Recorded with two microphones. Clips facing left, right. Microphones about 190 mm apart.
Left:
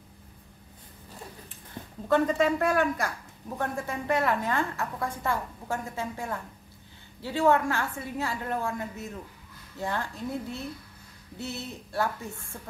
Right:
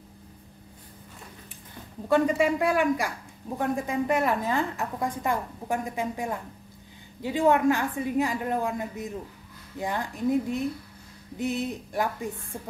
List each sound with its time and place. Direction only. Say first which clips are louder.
2.0 s a woman's voice: right 1 dB; 15° right (ahead or behind)